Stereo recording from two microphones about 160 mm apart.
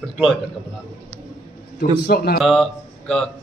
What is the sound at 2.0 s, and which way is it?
Speech, 90° left.